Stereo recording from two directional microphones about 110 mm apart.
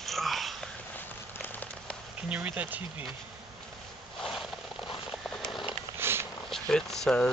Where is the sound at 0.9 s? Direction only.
15° left (ahead or behind).